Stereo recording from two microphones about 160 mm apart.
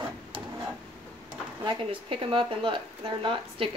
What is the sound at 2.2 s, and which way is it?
Speech, 35° right (ahead or behind).